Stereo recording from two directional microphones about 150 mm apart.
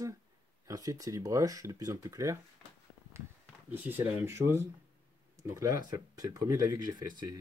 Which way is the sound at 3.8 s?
15° right (ahead or behind).